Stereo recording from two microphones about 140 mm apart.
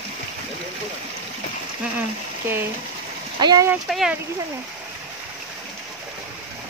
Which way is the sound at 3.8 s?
Centre (ahead or behind).